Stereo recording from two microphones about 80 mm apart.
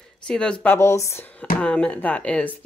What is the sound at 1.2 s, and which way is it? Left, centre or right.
Speech, centre.